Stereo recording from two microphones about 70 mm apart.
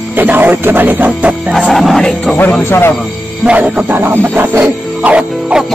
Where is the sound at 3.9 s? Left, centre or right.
Right.